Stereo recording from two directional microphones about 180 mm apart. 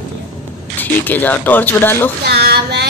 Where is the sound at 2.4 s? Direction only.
60° right (ahead or behind).